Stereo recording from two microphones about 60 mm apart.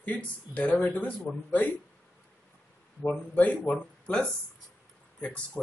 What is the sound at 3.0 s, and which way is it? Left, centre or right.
Speech, left.